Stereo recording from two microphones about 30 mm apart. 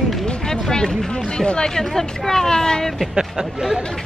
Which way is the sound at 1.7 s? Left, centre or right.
Centre.